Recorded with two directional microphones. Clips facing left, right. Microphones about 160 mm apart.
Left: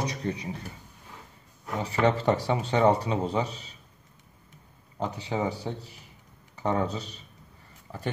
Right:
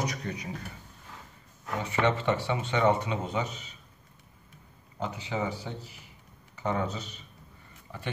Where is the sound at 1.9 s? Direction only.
35° left (ahead or behind).